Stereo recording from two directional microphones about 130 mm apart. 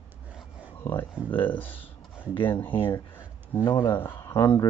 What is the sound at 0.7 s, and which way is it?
Speech, 15° left (ahead or behind).